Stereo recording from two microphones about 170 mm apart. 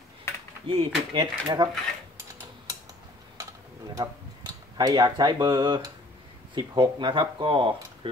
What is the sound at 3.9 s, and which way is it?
Speech, 20° right (ahead or behind).